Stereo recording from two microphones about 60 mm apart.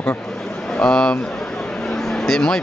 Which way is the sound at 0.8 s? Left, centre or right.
Centre.